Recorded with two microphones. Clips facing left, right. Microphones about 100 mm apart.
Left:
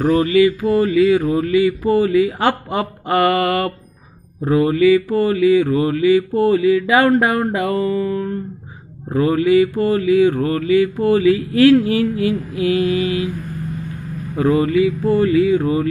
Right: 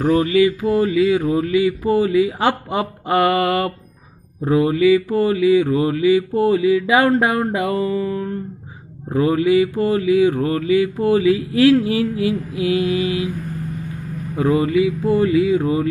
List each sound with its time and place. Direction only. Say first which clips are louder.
0.0 s mantra: left 1 dB; 15° right (ahead or behind)
14.3 s mantra: left 1 dB; 15° right (ahead or behind)